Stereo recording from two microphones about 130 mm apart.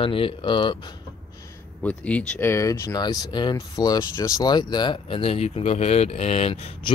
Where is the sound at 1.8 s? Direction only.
10° left (ahead or behind).